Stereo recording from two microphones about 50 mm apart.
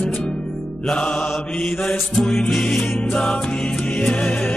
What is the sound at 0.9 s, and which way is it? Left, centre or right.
Mantra, left.